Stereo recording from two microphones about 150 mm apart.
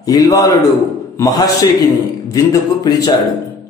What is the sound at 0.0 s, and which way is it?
A man's voice, 25° left (ahead or behind).